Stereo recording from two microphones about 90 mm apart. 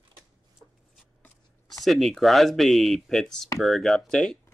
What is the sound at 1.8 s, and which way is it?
Speech, centre (ahead or behind).